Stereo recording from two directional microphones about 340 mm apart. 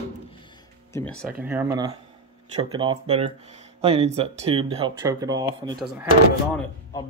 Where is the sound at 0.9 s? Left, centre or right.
Centre.